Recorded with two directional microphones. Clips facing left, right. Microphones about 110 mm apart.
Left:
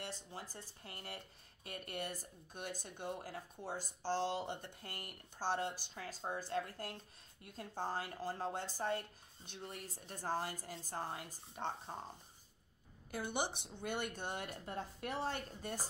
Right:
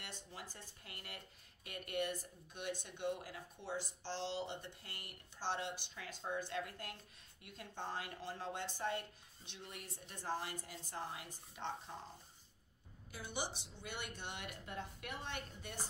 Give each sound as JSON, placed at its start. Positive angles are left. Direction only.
{"t": 0.0, "sound": "speech", "side_deg": 35}
{"t": 13.1, "sound": "speech", "side_deg": 55}